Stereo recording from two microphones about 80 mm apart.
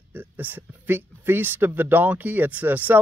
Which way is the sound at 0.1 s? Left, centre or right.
Right.